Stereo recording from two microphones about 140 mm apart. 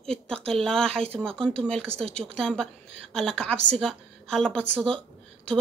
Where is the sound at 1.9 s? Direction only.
45° right (ahead or behind).